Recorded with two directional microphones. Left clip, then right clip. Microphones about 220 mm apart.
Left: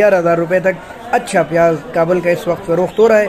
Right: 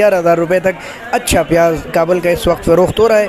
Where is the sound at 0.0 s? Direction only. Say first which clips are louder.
Right 1 dB; 40° right (ahead or behind).